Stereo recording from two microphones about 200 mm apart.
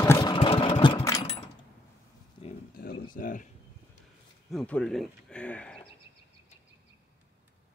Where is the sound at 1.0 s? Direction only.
15° left (ahead or behind).